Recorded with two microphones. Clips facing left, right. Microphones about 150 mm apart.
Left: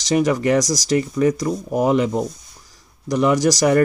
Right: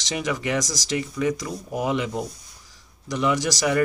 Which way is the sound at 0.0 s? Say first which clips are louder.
Left 9 dB; 45° left (ahead or behind).